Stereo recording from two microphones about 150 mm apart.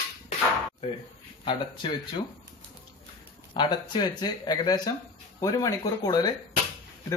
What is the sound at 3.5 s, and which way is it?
Speech, 30° left (ahead or behind).